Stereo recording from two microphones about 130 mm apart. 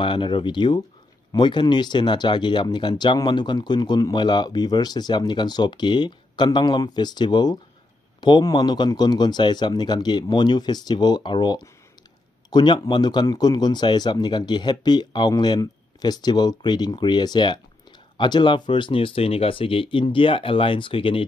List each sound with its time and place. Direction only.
0.0 s speech: 40° left (ahead or behind)